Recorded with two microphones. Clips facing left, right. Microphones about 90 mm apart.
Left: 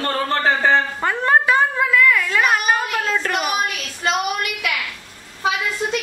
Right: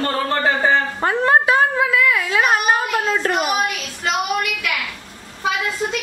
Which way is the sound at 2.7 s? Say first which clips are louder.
Right 1 dB; 15° right (ahead or behind).